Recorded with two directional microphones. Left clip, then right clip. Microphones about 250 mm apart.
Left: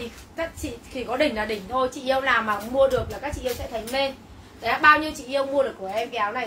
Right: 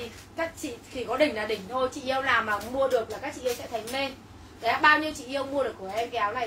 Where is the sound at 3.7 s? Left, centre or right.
Centre.